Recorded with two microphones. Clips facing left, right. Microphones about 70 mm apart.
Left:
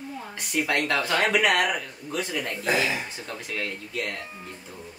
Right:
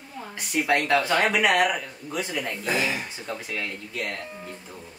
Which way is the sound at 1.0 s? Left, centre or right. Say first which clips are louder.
Right 1 dB; centre.